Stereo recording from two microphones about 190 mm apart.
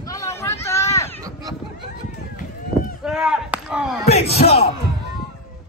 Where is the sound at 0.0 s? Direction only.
15° left (ahead or behind).